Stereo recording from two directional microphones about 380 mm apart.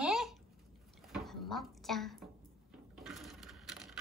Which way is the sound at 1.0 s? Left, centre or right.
Centre.